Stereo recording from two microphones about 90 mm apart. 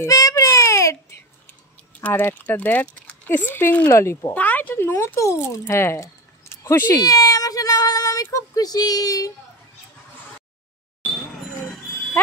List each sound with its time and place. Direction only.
0.0 s baby cry: 40° left (ahead or behind)
2.0 s speech: 20° left (ahead or behind)
3.9 s speech: 35° left (ahead or behind)
4.3 s speech: 20° left (ahead or behind)
6.5 s a sound: 25° left (ahead or behind)
7.0 s speech: 40° left (ahead or behind)